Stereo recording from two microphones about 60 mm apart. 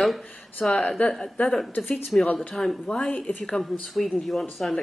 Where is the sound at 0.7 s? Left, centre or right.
Left.